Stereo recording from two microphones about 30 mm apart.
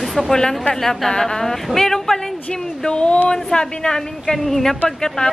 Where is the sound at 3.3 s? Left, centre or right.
Left.